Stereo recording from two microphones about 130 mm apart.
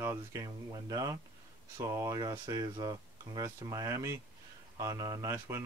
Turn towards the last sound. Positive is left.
turn(degrees=-25)  # may be behind; listen again after turning